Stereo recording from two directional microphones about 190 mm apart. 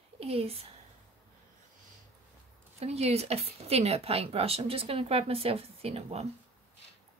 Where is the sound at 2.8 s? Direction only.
35° right (ahead or behind).